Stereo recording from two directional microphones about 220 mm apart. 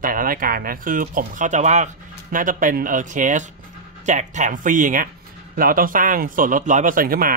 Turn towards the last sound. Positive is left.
turn(degrees=-40)  # may be behind; listen again after turning